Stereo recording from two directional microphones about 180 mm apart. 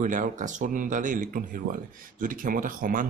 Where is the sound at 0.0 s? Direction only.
45° right (ahead or behind).